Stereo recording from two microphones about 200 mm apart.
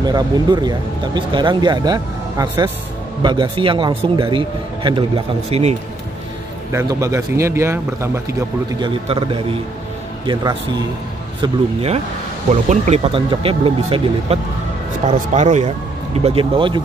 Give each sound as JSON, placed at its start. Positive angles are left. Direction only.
{"t": 0.0, "sound": "speech", "side_deg": -20}
{"t": 6.7, "sound": "speech", "side_deg": -15}
{"t": 9.1, "sound": "speech", "side_deg": -30}
{"t": 11.4, "sound": "speech", "side_deg": -30}